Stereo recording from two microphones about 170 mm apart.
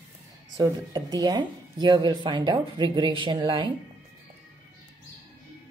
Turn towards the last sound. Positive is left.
turn(degrees=-30)  # may be behind; listen again after turning